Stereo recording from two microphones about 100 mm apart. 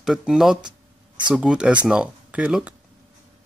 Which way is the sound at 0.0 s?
5° right (ahead or behind).